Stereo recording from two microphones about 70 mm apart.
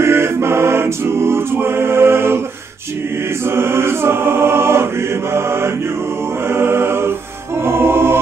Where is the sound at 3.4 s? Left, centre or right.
Right.